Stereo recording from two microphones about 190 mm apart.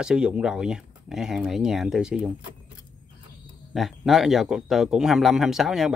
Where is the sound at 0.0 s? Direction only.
5° right (ahead or behind).